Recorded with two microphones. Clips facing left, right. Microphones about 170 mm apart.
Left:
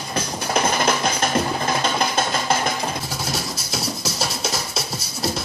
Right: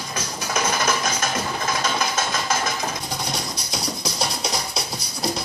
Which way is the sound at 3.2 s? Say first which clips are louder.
Left 2 dB; 5° left (ahead or behind).